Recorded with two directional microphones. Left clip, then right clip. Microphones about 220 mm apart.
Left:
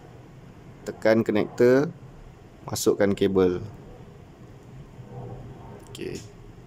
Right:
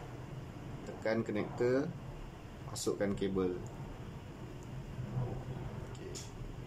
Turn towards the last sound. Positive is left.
turn(degrees=50)  # may be behind; listen again after turning